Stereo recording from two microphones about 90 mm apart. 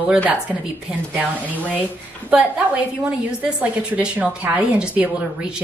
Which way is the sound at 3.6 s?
15° right (ahead or behind).